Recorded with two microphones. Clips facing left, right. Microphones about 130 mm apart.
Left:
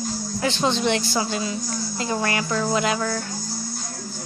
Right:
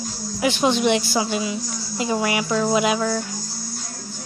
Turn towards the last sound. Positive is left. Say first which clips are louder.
# right 3 dB
turn(degrees=-5)  # may be behind; listen again after turning